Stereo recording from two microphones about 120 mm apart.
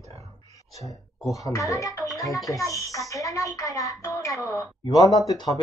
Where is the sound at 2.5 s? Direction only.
25° left (ahead or behind).